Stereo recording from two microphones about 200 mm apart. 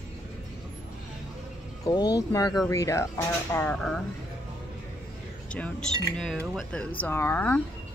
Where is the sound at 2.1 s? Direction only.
20° left (ahead or behind).